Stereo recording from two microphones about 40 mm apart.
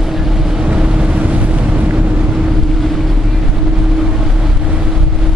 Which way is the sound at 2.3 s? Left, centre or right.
Centre.